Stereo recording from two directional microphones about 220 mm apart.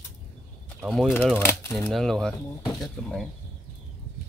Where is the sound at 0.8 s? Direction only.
Centre (ahead or behind).